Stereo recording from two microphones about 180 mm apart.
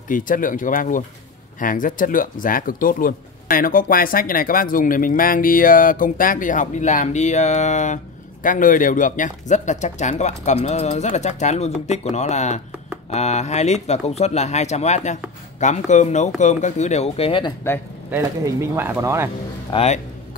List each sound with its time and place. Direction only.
0.1 s speech: 50° left (ahead or behind); by 17.6 s 25° left (ahead or behind)
18.1 s speech: 15° right (ahead or behind)
19.7 s speech: 35° left (ahead or behind)